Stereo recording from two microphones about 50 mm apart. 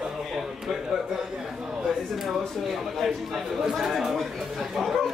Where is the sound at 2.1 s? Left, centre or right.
Centre.